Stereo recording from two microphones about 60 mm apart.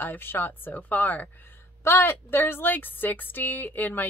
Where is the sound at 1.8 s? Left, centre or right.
Left.